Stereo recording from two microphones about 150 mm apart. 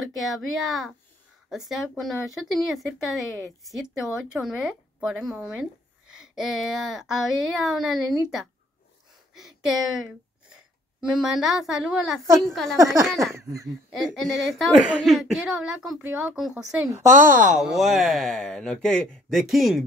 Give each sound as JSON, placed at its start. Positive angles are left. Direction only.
{"t": 0.0, "sound": "speech", "side_deg": 0}
{"t": 12.7, "sound": "speech", "side_deg": -20}
{"t": 13.0, "sound": "speech", "side_deg": 0}
{"t": 13.3, "sound": "speech", "side_deg": -20}
{"t": 13.9, "sound": "speech", "side_deg": 0}
{"t": 17.3, "sound": "speech", "side_deg": -60}
{"t": 17.6, "sound": "speech", "side_deg": 0}